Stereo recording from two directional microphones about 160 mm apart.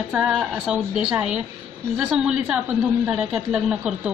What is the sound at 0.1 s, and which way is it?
A woman's voice, 5° right (ahead or behind).